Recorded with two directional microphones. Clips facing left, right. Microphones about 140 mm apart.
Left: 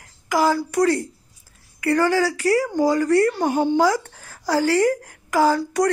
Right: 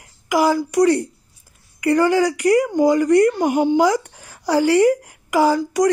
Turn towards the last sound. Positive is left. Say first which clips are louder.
# right 2 dB
turn(degrees=-15)  # may be behind; listen again after turning